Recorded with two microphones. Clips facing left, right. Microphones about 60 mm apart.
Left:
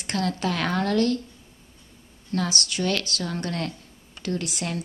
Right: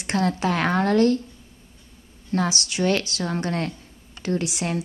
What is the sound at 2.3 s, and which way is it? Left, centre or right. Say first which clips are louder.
Speech: right 3 dB; right.